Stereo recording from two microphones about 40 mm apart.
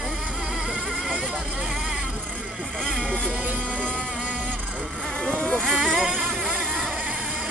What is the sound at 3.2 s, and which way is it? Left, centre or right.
Speech, right.